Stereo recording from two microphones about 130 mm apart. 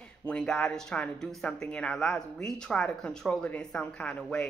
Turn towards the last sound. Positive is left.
turn(degrees=5)  # may be behind; listen again after turning